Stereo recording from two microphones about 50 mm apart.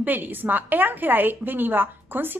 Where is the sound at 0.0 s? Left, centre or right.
Right.